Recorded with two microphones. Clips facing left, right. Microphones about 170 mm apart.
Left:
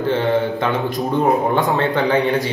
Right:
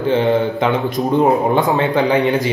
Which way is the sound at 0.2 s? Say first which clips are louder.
Right 3 dB; 20° right (ahead or behind).